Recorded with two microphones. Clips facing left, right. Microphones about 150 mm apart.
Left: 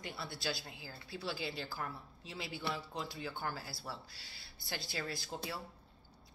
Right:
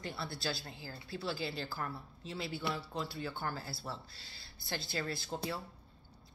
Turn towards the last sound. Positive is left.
turn(degrees=-25)  # may be behind; listen again after turning